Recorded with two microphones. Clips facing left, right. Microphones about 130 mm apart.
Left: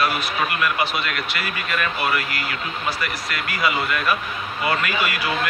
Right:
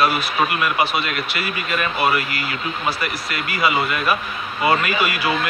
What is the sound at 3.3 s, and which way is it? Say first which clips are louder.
Speech: right 3 dB; 15° right (ahead or behind).